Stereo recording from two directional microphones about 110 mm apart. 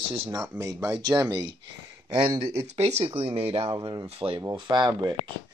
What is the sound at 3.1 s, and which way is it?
Speech, 60° right (ahead or behind).